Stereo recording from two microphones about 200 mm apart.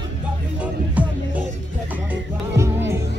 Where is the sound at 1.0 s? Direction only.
5° right (ahead or behind).